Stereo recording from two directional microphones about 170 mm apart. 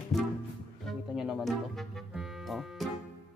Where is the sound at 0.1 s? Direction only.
Centre (ahead or behind).